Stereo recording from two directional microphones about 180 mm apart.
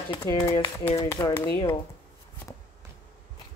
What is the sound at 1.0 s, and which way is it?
Speech, 15° left (ahead or behind).